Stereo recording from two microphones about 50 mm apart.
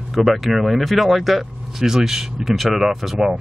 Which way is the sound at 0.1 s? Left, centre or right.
Centre.